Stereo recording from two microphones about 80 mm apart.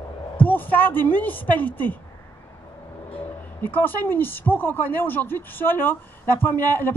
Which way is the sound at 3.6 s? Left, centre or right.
Left.